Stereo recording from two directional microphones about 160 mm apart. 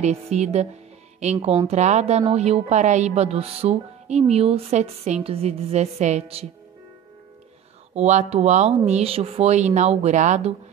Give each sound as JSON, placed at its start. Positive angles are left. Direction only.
{"t": 0.0, "sound": "speech", "side_deg": -45}
{"t": 2.3, "sound": "music", "side_deg": -45}
{"t": 7.9, "sound": "speech", "side_deg": -45}